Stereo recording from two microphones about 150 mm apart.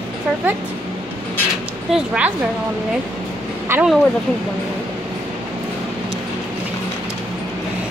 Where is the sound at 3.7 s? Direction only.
15° right (ahead or behind).